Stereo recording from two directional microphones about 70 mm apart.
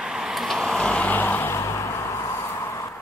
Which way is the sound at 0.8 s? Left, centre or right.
Centre.